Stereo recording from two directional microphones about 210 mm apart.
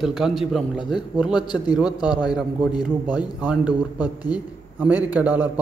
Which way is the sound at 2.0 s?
20° left (ahead or behind).